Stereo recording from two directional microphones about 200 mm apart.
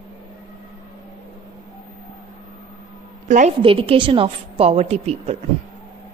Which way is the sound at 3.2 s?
35° right (ahead or behind).